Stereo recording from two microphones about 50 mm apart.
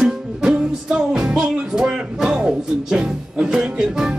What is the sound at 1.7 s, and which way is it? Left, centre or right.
Music, centre.